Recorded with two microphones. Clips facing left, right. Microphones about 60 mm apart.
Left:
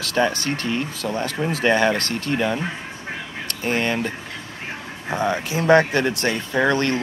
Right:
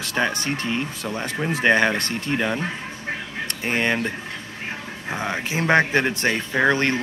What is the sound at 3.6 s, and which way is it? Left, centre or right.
Speech, centre.